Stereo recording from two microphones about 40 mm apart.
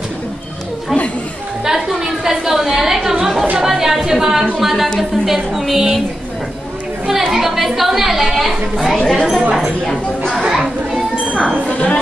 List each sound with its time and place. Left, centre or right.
1.6 s a sound: centre
4.6 s a woman's voice: centre
4.8 s speech: centre
5.2 s a woman's voice: centre
7.1 s a woman's voice: centre
8.9 s speech: centre
10.4 s children playing: centre
11.7 s a sound: left